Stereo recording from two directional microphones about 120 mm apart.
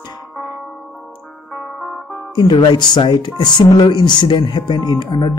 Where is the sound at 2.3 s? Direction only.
40° left (ahead or behind).